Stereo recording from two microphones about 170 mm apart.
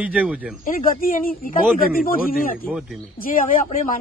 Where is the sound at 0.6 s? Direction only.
55° left (ahead or behind).